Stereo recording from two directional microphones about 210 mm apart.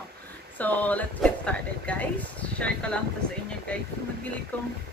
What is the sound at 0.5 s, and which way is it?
Speech, 10° left (ahead or behind).